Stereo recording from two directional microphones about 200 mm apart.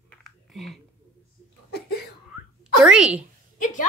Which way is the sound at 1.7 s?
55° left (ahead or behind).